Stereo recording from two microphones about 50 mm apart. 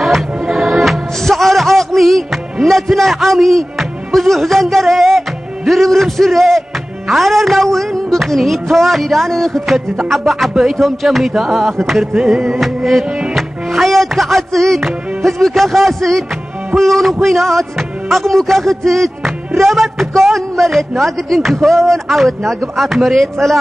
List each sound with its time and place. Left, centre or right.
0.0 s music: centre
5.7 s speech: centre
13.3 s music: centre
16.7 s speech: centre